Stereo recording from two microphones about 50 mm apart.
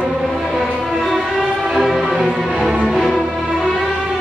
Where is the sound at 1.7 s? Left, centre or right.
Centre.